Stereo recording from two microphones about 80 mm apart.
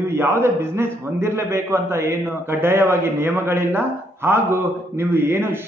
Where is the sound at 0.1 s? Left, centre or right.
Right.